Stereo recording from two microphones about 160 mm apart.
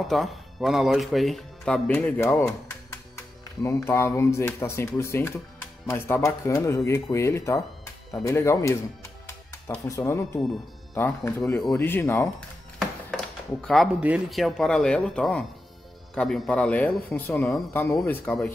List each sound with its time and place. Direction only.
0.1 s speech: centre (ahead or behind)
3.6 s speech: 15° left (ahead or behind)
12.7 s music: centre (ahead or behind)
14.0 s speech: 5° right (ahead or behind)